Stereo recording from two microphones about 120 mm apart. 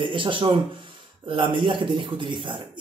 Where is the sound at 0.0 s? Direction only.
40° right (ahead or behind).